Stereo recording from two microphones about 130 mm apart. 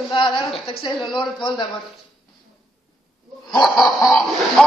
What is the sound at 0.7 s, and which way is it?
Speech, 45° left (ahead or behind).